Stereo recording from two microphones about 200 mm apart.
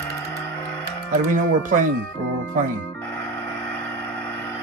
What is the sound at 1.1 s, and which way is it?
Speech, 40° right (ahead or behind).